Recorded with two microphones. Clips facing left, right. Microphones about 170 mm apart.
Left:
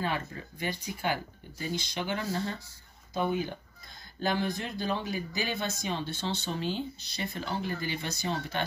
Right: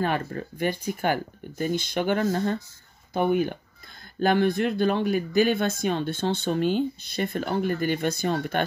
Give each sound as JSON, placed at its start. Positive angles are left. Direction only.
{"t": 0.0, "sound": "speech", "side_deg": -55}